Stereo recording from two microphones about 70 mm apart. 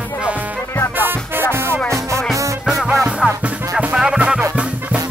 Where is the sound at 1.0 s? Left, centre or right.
Right.